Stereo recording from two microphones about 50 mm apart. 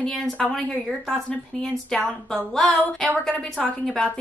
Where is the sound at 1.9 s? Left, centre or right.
Centre.